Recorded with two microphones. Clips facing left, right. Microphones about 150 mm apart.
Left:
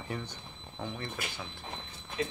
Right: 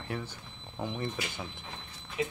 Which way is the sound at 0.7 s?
15° right (ahead or behind).